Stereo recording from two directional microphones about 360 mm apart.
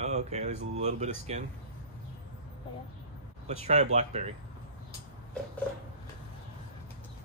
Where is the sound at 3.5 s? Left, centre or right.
Centre.